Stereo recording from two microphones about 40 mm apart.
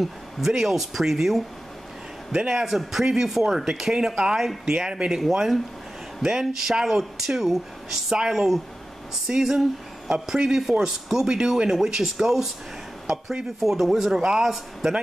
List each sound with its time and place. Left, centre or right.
0.0 s speech: centre